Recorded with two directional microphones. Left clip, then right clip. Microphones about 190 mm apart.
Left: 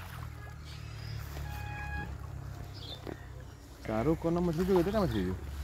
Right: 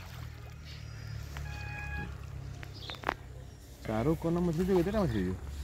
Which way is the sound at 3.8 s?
30° right (ahead or behind).